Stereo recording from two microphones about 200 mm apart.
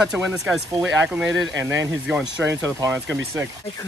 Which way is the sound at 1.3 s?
65° right (ahead or behind).